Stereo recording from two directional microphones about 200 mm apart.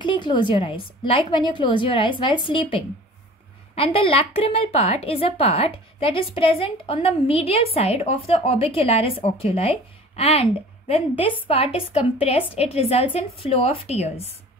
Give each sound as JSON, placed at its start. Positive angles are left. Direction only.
{"t": 0.0, "sound": "a woman's voice", "side_deg": 25}